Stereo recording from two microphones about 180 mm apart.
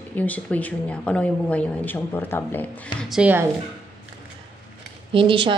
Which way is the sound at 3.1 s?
10° right (ahead or behind).